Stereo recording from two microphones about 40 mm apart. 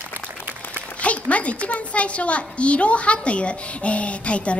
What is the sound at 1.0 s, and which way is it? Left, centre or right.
A woman's voice, left.